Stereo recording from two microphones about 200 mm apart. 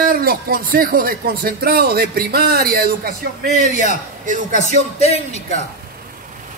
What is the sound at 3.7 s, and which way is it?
Speech, 35° left (ahead or behind).